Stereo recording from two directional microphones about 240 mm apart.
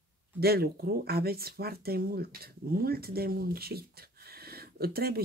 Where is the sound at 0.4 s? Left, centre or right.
Right.